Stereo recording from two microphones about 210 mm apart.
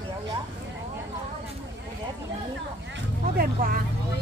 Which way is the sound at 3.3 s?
45° right (ahead or behind).